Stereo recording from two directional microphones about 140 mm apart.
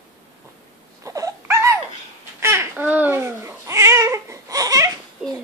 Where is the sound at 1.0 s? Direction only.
25° right (ahead or behind).